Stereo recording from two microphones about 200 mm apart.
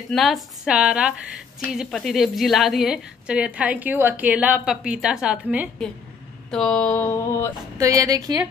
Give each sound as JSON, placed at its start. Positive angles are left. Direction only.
{"t": 0.1, "sound": "a woman's voice", "side_deg": 0}
{"t": 6.5, "sound": "a sound", "side_deg": 5}
{"t": 7.7, "sound": "a woman's voice", "side_deg": -15}